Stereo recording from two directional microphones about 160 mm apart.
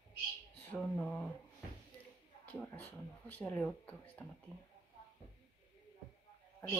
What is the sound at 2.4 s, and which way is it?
Speech, 10° left (ahead or behind).